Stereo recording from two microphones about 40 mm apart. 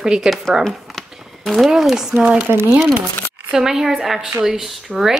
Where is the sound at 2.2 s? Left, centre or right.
Right.